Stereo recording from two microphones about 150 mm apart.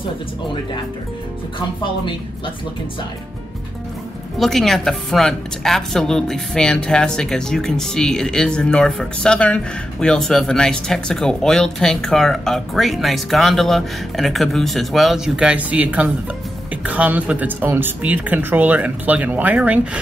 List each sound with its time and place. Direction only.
1.8 s a woman's voice: 30° left (ahead or behind)
4.4 s a woman's voice: centre (ahead or behind)